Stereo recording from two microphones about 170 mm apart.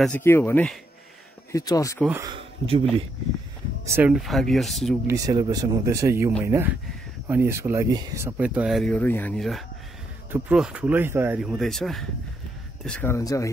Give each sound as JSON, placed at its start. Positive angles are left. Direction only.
{"t": 0.0, "sound": "speech", "side_deg": 10}
{"t": 1.5, "sound": "speech", "side_deg": 20}
{"t": 2.2, "sound": "speech", "side_deg": -30}
{"t": 3.8, "sound": "speech", "side_deg": -15}
{"t": 4.1, "sound": "speech", "side_deg": 0}
{"t": 5.0, "sound": "speech", "side_deg": -20}
{"t": 11.4, "sound": "speech", "side_deg": 0}